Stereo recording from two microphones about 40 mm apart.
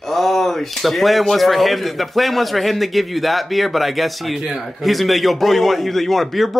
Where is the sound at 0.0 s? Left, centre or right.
Centre.